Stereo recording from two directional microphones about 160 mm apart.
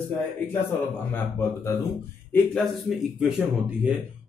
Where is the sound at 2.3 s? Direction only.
5° left (ahead or behind).